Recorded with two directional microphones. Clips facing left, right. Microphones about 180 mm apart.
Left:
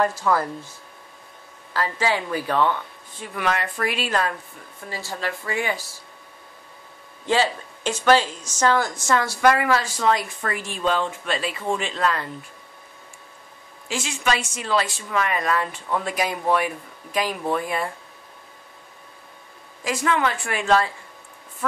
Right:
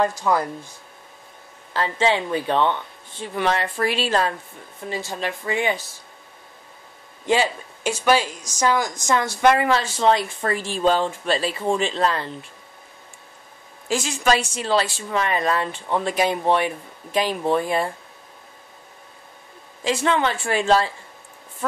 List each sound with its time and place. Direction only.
0.0 s speech: 20° right (ahead or behind)
1.7 s a woman's voice: 25° right (ahead or behind)
7.2 s a woman's voice: 15° right (ahead or behind); by 12.3 s 30° right (ahead or behind)
13.8 s a woman's voice: 40° right (ahead or behind)
19.8 s a woman's voice: 25° right (ahead or behind)